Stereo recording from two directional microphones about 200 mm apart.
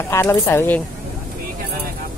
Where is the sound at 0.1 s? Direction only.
15° left (ahead or behind).